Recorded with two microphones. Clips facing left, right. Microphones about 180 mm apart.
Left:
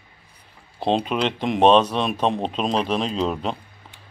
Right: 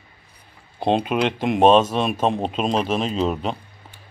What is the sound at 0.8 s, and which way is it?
Speech, 5° right (ahead or behind).